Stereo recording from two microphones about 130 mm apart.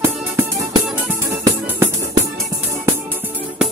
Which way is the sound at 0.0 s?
20° right (ahead or behind).